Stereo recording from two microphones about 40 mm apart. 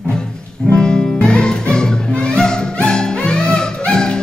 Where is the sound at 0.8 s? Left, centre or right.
Left.